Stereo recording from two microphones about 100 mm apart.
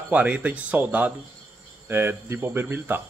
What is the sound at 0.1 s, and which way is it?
Speech, 15° right (ahead or behind).